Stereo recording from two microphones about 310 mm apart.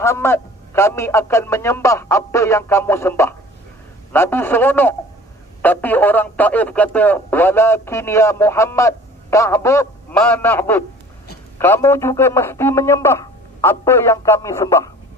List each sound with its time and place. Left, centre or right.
0.0 s speech: centre